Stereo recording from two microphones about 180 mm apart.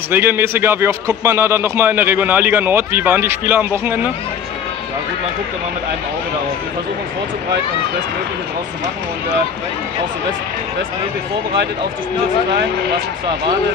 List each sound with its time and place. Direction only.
0.1 s a man's voice: 10° right (ahead or behind)